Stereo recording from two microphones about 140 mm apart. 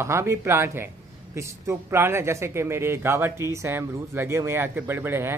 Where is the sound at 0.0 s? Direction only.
20° right (ahead or behind).